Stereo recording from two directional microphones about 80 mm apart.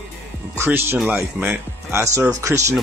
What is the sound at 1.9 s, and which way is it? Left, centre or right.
Speech, right.